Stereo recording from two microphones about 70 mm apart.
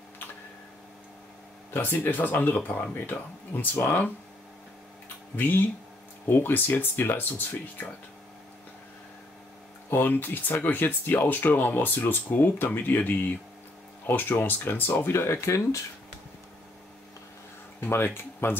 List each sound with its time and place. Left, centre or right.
1.7 s speech: left
5.3 s speech: left
9.8 s speech: left
14.9 s speech: left
17.7 s speech: left